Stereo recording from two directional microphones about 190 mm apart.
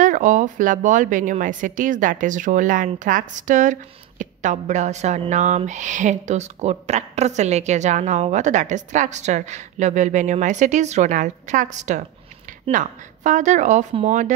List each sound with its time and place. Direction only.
0.0 s a woman's voice: 40° right (ahead or behind)